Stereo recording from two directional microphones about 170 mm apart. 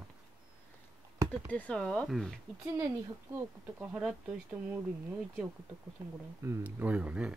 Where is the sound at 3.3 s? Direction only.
15° right (ahead or behind).